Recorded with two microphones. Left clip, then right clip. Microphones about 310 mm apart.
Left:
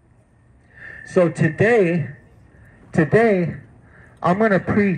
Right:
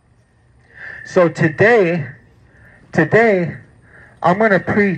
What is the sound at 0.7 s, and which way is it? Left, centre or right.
A man's voice, right.